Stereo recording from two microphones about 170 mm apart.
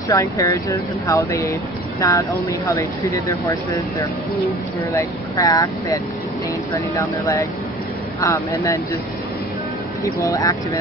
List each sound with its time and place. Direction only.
0.1 s speech: 15° left (ahead or behind)
4.9 s speech: 20° left (ahead or behind)
7.0 s speech: 20° left (ahead or behind)
10.0 s speech: 20° left (ahead or behind)